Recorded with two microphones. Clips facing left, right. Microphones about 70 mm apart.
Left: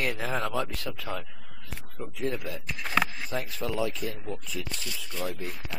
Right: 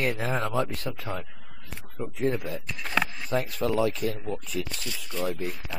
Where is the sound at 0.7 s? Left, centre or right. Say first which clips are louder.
Right 2 dB; right.